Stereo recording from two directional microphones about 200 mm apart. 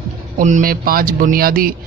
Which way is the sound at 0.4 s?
40° right (ahead or behind).